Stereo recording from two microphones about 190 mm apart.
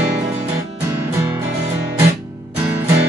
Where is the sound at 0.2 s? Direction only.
15° right (ahead or behind).